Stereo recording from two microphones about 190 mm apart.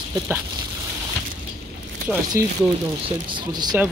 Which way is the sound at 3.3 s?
25° right (ahead or behind).